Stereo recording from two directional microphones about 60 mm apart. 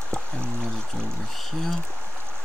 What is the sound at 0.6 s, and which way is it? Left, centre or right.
Pour, centre.